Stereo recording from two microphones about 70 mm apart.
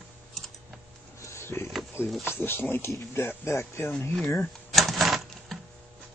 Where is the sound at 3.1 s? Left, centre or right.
Left.